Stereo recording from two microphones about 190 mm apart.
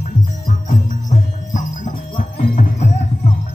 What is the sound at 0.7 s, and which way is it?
Music, 40° left (ahead or behind).